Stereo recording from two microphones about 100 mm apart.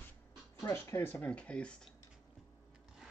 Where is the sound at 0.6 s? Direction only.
30° left (ahead or behind); by 1.9 s 10° left (ahead or behind).